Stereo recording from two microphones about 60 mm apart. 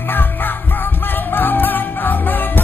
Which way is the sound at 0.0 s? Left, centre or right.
Left.